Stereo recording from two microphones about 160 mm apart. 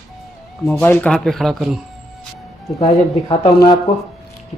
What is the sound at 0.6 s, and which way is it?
Speech, 10° left (ahead or behind).